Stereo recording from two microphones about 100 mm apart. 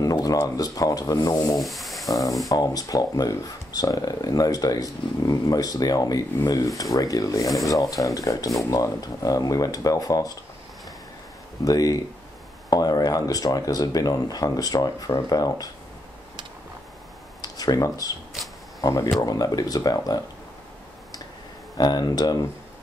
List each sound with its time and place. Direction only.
0.0 s speech: 40° left (ahead or behind)
1.6 s a sound: centre (ahead or behind)
2.5 s speech: 40° left (ahead or behind)
11.6 s speech: 35° left (ahead or behind)
17.4 s a sound: 40° left (ahead or behind)
18.8 s speech: 35° left (ahead or behind)
21.7 s speech: 45° left (ahead or behind)